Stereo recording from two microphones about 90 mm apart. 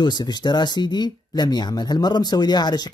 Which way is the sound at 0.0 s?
55° left (ahead or behind).